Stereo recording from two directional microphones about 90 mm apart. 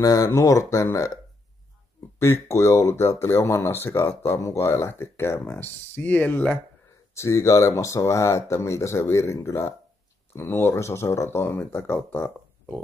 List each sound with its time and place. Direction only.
0.0 s speech: 40° left (ahead or behind)
2.4 s speech: 35° left (ahead or behind)
7.2 s speech: 35° left (ahead or behind)